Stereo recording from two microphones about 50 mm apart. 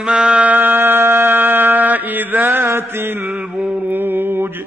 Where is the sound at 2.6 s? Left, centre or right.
Right.